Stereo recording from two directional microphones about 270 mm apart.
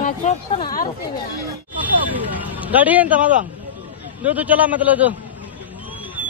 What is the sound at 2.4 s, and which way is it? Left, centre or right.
Vehicle, centre.